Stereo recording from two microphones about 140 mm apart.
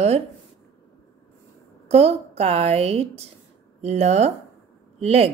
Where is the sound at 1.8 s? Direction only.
50° right (ahead or behind).